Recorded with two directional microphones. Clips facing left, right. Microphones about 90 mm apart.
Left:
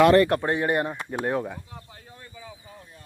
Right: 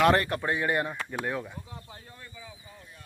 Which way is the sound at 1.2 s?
35° left (ahead or behind).